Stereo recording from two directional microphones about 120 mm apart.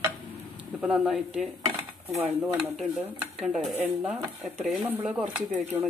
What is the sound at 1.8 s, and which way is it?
Dishes, 15° right (ahead or behind).